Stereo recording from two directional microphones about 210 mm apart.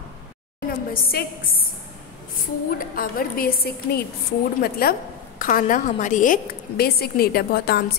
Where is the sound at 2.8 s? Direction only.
45° left (ahead or behind).